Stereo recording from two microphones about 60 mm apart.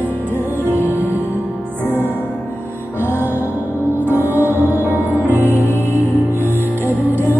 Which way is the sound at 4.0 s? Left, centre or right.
Right.